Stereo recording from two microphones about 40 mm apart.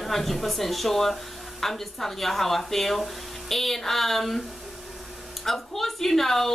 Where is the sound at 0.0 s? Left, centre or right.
Centre.